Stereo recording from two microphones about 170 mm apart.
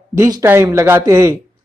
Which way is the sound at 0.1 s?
15° right (ahead or behind).